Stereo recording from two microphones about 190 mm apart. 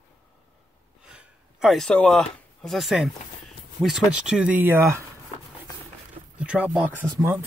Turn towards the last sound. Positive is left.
turn(degrees=-15)  # may be behind; listen again after turning